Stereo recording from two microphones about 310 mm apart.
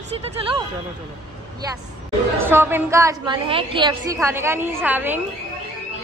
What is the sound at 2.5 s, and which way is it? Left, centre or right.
A woman's voice, centre.